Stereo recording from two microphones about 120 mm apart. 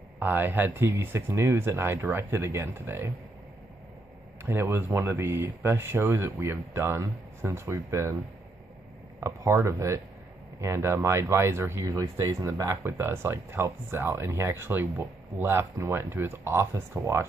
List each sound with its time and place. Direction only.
0.2 s speech: 15° right (ahead or behind)
4.5 s speech: 20° right (ahead or behind)
9.2 s speech: 25° right (ahead or behind)